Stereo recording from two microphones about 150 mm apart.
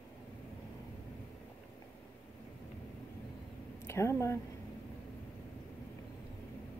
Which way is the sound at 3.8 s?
15° left (ahead or behind).